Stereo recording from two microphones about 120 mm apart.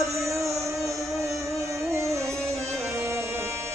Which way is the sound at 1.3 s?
25° right (ahead or behind).